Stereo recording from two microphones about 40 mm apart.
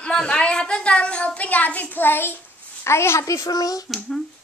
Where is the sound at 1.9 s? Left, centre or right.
Left.